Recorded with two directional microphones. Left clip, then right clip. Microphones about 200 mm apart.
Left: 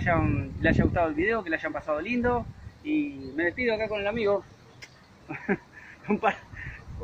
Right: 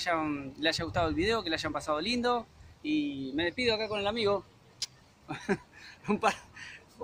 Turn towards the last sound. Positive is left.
turn(degrees=-10)  # may be behind; listen again after turning